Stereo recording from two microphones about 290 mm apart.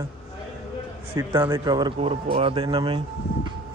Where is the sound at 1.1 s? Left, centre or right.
Centre.